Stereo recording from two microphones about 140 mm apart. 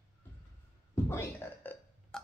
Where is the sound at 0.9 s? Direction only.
15° left (ahead or behind).